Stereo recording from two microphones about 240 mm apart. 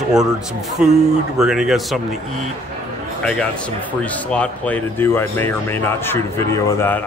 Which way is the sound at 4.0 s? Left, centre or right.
Centre.